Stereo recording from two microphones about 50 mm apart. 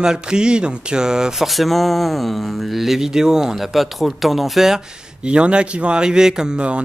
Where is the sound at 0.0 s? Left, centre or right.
Centre.